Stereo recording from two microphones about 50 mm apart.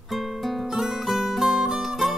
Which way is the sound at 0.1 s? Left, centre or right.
Centre.